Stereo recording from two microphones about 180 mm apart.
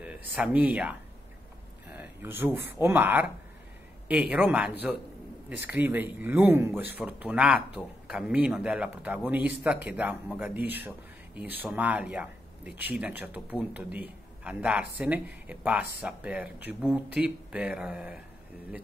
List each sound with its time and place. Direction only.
0.0 s speech: 10° right (ahead or behind)